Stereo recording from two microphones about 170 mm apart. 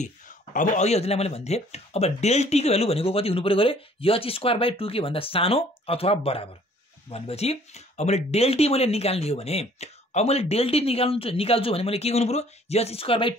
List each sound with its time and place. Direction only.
0.0 s speech: 45° left (ahead or behind)